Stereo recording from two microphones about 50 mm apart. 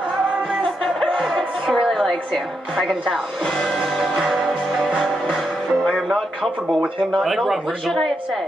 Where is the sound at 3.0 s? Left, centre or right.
Centre.